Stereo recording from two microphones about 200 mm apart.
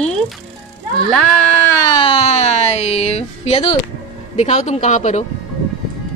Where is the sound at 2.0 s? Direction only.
30° left (ahead or behind).